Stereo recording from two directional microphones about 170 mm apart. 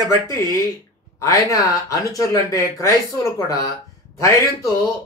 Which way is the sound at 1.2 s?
20° left (ahead or behind).